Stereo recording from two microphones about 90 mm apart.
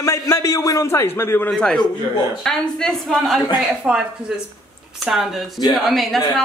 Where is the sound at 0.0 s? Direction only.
35° left (ahead or behind).